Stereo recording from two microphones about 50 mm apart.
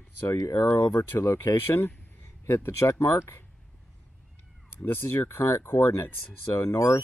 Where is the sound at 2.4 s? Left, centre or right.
Left.